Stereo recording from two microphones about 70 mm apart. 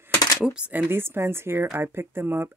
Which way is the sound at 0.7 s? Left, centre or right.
Right.